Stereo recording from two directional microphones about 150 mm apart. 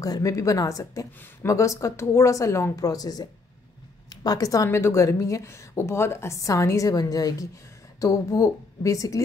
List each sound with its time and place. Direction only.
0.0 s a woman's voice: 25° left (ahead or behind)